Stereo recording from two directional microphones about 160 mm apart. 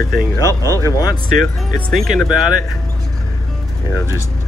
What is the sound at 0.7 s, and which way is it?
Speech, 20° left (ahead or behind).